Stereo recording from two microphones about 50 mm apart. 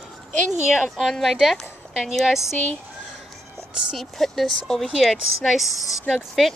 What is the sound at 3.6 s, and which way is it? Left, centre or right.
A woman's voice, centre.